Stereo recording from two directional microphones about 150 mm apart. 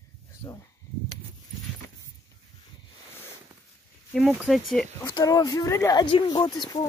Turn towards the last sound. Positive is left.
turn(degrees=30)  # may be behind; listen again after turning